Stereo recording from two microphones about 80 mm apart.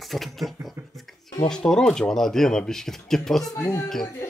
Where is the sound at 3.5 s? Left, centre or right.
Left.